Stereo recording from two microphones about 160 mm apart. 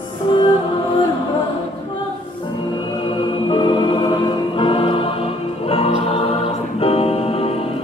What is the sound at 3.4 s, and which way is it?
Music, 30° left (ahead or behind).